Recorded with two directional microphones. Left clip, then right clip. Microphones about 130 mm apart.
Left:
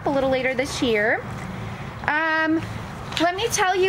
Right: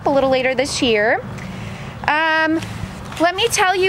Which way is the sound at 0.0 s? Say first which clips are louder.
Right 6 dB; 35° right (ahead or behind).